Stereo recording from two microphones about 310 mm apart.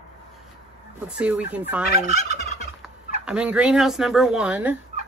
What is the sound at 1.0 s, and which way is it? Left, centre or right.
A woman's voice, centre.